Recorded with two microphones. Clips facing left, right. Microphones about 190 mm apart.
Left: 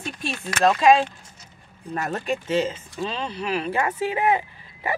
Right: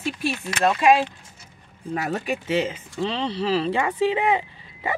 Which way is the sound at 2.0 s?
5° right (ahead or behind).